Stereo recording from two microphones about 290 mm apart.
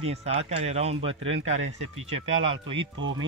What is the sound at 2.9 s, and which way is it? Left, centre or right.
Speech, right.